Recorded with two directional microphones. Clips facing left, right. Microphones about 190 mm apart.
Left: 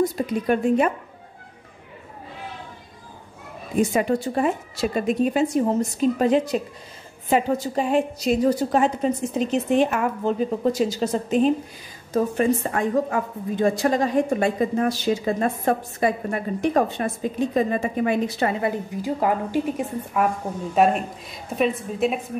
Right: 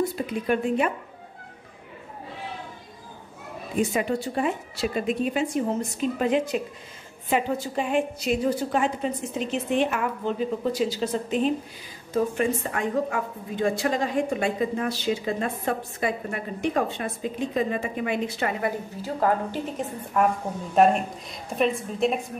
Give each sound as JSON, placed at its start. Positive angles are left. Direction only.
{"t": 0.1, "sound": "a woman's voice", "side_deg": 40}
{"t": 3.9, "sound": "a woman's voice", "side_deg": 45}
{"t": 18.9, "sound": "a woman's voice", "side_deg": 15}